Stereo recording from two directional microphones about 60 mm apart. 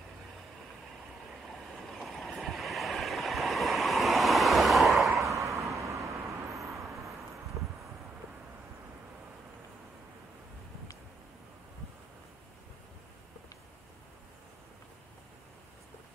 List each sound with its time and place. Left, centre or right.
1.5 s waves: centre
5.3 s vehicle: right